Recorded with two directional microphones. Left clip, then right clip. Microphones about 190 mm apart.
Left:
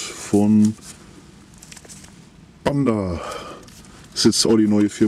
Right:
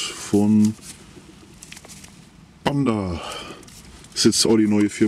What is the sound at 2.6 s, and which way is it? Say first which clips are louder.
Speech: left 2 dB; 10° right (ahead or behind).